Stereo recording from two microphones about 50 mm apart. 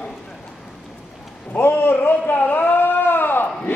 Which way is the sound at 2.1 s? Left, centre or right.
Left.